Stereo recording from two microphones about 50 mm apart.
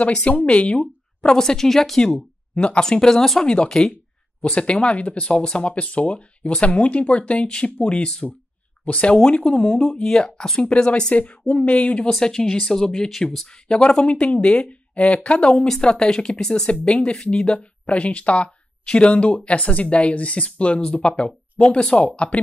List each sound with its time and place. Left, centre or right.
0.0 s speech: left; by 2.1 s centre
2.5 s speech: left
4.4 s speech: left
9.8 s speech: centre; by 12.1 s left
12.1 s speech: centre